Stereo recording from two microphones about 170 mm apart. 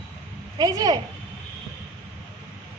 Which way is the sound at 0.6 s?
20° right (ahead or behind).